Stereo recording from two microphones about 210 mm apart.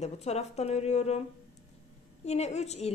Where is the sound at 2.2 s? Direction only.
30° left (ahead or behind).